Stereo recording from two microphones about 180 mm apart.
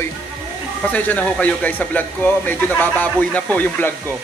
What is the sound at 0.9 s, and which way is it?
Speech, 10° left (ahead or behind).